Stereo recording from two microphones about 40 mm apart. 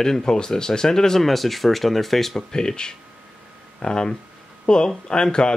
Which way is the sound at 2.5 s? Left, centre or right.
Centre.